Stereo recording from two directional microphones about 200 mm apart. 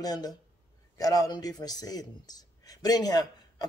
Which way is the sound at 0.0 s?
20° left (ahead or behind).